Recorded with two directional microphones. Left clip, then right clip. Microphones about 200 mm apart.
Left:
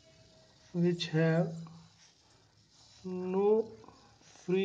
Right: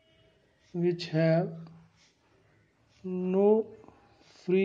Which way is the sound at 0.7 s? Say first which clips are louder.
Right 3 dB; 20° right (ahead or behind).